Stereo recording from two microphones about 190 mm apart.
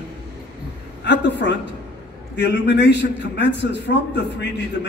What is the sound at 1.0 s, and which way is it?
A man's voice, 65° left (ahead or behind).